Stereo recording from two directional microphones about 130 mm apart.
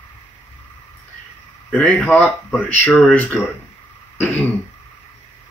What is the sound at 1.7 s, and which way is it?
Speech, 10° left (ahead or behind).